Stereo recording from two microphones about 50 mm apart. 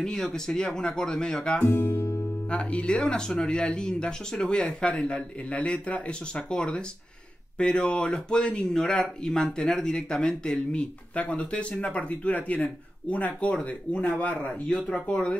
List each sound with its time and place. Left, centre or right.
0.0 s speech: centre
1.7 s speech: left
2.5 s speech: left